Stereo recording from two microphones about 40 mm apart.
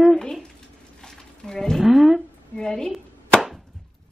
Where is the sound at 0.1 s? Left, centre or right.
Centre.